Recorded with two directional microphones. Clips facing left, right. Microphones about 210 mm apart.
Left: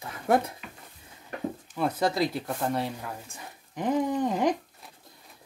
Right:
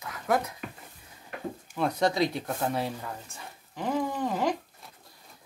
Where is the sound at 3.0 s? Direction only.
15° left (ahead or behind).